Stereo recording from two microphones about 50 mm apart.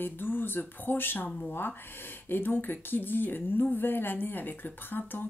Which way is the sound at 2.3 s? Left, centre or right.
Left.